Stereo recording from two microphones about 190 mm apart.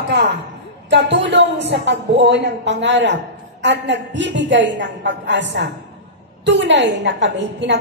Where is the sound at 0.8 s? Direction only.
70° right (ahead or behind).